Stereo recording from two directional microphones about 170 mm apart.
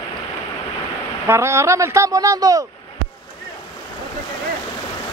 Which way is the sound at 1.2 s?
15° right (ahead or behind).